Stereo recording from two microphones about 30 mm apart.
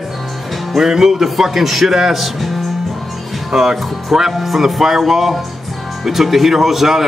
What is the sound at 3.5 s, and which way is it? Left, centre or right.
A man's voice, centre.